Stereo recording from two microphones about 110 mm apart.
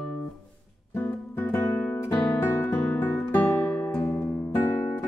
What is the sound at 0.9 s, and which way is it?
Guitar, 20° left (ahead or behind).